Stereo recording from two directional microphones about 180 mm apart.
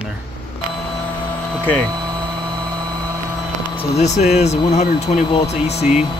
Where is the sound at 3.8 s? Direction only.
40° left (ahead or behind).